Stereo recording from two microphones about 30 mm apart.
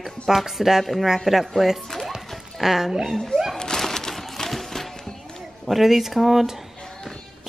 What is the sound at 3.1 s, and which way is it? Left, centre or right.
Speech, centre.